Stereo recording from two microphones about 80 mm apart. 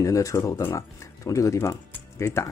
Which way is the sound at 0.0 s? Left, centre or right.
Left.